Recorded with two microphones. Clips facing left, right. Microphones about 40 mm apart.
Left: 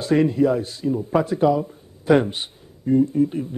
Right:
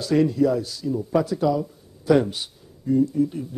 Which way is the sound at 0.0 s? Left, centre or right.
Left.